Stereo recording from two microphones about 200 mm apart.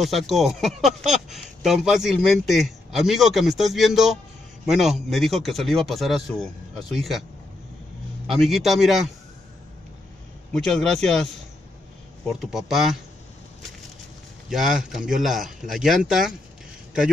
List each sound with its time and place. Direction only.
0.0 s speech: centre (ahead or behind)
8.3 s speech: centre (ahead or behind)
10.5 s speech: 5° left (ahead or behind)
12.3 s speech: centre (ahead or behind)
14.5 s speech: centre (ahead or behind)